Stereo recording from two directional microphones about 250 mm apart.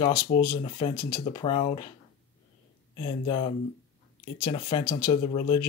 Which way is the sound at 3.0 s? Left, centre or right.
Left.